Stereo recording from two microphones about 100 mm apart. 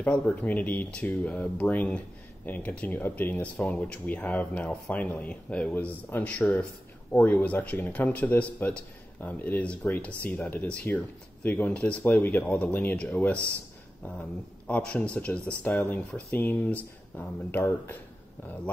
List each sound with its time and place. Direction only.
0.0 s speech: 15° left (ahead or behind)
15.7 s speech: 25° left (ahead or behind)